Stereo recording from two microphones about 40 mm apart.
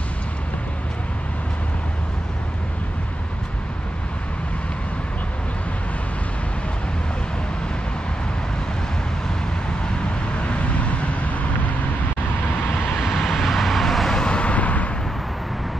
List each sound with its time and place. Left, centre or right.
10.4 s vehicle: left
12.9 s vehicle: centre
14.1 s vehicle: left